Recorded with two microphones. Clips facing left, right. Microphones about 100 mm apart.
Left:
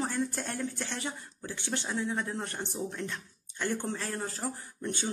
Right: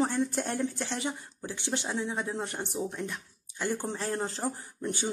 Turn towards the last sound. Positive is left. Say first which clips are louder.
# right 2 dB
turn(degrees=-15)  # may be behind; listen again after turning